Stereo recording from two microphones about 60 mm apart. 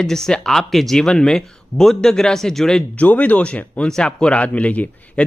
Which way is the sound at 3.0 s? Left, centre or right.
Left.